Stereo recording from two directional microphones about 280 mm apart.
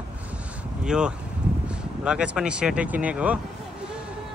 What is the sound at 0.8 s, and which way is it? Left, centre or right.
Speech, centre.